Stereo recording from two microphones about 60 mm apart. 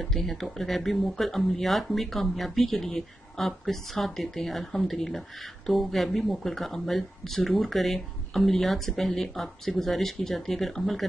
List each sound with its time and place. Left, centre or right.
0.0 s speech: centre